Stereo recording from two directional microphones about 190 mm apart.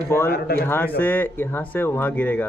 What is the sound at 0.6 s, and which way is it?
Speech, 10° left (ahead or behind).